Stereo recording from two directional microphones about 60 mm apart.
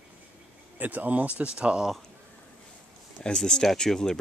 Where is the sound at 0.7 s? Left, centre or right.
Right.